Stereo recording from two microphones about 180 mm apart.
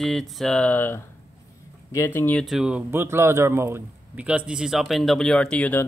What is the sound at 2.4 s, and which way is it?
A man's voice, 5° right (ahead or behind).